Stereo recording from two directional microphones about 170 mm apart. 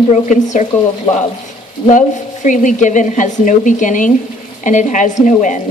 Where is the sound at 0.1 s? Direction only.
45° left (ahead or behind).